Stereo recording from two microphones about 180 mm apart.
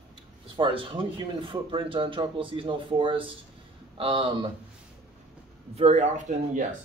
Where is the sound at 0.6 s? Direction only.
30° right (ahead or behind).